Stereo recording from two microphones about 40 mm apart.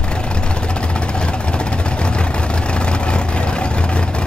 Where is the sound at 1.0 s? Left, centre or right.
Left.